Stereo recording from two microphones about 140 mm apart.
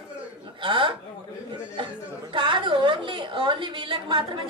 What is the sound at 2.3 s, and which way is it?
A woman's voice, 35° right (ahead or behind).